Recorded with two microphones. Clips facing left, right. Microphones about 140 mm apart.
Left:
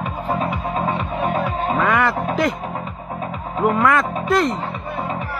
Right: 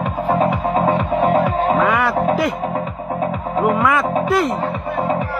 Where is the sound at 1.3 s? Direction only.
45° right (ahead or behind).